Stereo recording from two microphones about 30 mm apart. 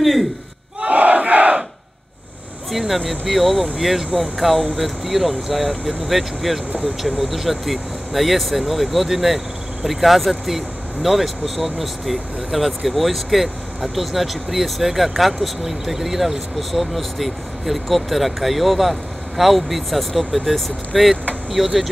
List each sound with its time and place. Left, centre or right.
0.0 s a sound: centre
0.9 s crowd: right
2.7 s speech: centre
21.6 s speech: centre